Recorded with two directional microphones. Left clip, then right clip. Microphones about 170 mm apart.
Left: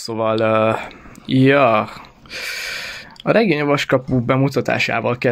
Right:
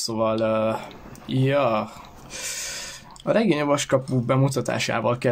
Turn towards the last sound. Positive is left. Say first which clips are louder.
# left 5 dB
turn(degrees=20)  # may be behind; listen again after turning